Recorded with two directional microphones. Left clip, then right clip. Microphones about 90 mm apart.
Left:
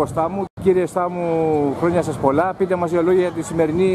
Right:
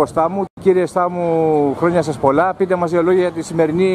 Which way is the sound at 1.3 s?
25° right (ahead or behind).